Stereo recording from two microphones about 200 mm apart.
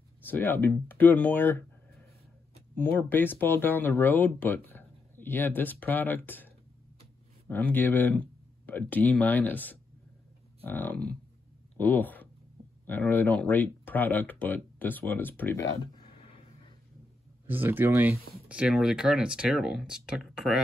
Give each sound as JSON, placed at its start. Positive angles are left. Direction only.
{"t": 0.3, "sound": "speech", "side_deg": 10}
{"t": 2.8, "sound": "speech", "side_deg": 10}
{"t": 15.8, "sound": "a sound", "side_deg": 25}
{"t": 17.5, "sound": "speech", "side_deg": -10}